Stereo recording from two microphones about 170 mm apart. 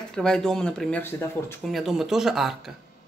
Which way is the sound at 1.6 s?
Centre (ahead or behind).